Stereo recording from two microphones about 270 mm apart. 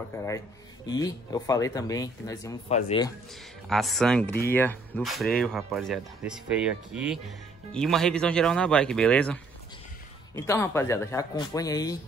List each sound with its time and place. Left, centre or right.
0.1 s speech: centre
3.6 s speech: centre